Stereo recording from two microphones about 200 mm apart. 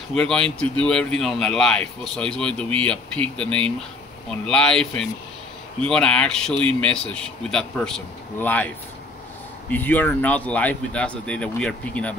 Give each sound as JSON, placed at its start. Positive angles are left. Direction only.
{"t": 0.1, "sound": "speech", "side_deg": 5}
{"t": 9.7, "sound": "speech", "side_deg": 10}